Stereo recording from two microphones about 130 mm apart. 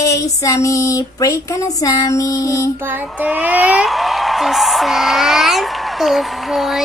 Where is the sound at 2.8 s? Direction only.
15° right (ahead or behind).